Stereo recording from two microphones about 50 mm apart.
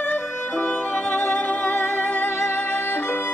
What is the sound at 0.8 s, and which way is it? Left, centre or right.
Music, centre.